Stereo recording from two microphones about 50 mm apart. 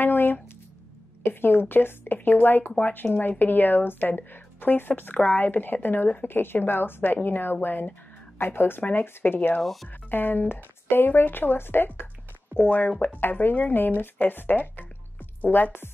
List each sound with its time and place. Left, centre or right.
0.0 s a sound: left
1.2 s speech: left
2.1 s a woman's voice: left
2.4 s a woman's voice: left
5.1 s a woman's voice: left
5.5 s a woman's voice: left
9.6 s speech: centre
10.1 s speech: left
12.5 s a woman's voice: left